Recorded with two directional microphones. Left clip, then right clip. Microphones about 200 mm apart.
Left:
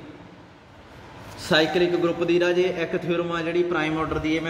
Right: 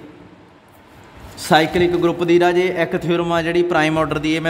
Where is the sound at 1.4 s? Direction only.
60° right (ahead or behind).